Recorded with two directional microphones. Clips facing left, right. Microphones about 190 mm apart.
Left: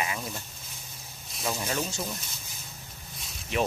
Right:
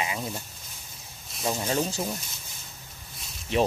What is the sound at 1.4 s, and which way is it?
Speech, 35° right (ahead or behind).